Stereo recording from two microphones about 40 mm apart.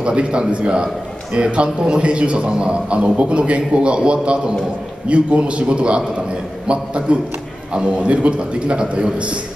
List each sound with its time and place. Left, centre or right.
0.0 s a man's voice: right